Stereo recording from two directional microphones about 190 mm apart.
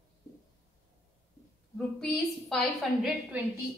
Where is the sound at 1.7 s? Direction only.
Centre (ahead or behind).